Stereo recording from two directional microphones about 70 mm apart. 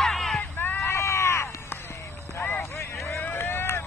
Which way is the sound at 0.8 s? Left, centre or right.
Left.